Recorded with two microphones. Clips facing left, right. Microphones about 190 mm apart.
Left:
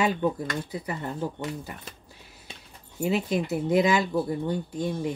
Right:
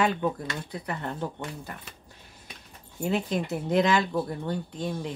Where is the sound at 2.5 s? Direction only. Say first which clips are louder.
Left 2 dB; 25° left (ahead or behind).